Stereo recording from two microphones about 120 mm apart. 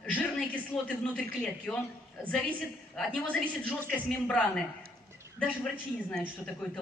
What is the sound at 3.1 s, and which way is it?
A woman's voice, 10° left (ahead or behind).